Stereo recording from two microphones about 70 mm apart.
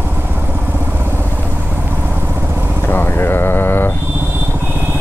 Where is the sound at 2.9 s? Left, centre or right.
Left.